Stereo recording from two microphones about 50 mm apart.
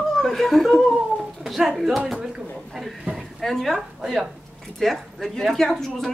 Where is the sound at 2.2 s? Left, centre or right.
Centre.